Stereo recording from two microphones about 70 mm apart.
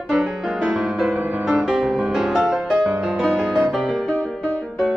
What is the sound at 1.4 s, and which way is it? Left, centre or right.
Music, centre.